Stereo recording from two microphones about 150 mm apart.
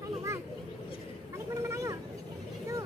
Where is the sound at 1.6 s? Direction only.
20° right (ahead or behind).